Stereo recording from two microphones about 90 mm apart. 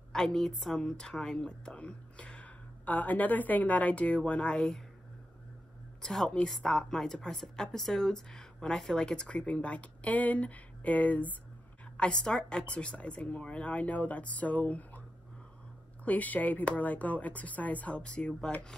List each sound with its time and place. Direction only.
0.1 s a woman's voice: 5° left (ahead or behind)
6.0 s a woman's voice: 10° left (ahead or behind)
16.1 s a woman's voice: 20° left (ahead or behind)